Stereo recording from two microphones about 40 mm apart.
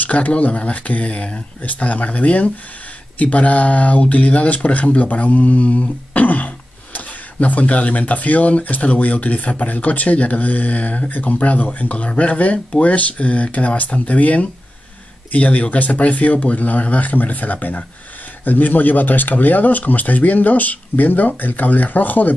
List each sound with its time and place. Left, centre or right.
0.0 s speech: left